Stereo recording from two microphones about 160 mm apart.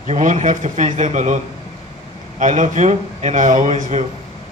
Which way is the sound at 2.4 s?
50° right (ahead or behind).